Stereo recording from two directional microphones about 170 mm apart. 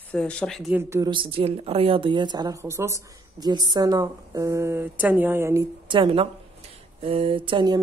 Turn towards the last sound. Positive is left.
turn(degrees=-25)  # may be behind; listen again after turning